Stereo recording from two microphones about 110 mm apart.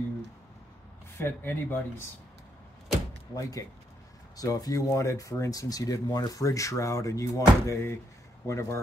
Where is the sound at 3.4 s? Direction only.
30° left (ahead or behind).